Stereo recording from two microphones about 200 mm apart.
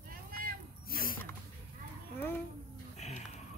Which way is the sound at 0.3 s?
45° right (ahead or behind).